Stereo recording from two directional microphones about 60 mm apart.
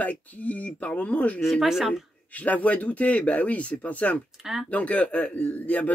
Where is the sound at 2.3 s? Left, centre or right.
Left.